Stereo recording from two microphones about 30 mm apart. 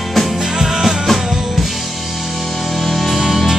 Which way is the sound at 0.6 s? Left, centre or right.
Centre.